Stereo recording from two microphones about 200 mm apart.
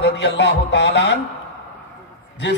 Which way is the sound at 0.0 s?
60° left (ahead or behind).